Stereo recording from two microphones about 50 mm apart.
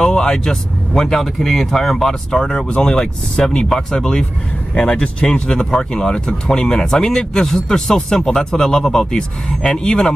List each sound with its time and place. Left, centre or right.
0.0 s speech: centre